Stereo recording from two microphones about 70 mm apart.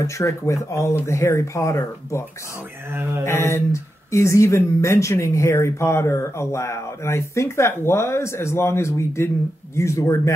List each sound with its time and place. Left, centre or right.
0.0 s speech: left
2.9 s mantra: right
3.3 s speech: left